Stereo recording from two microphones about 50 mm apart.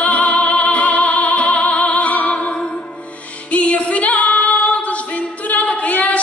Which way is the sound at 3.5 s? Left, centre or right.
Left.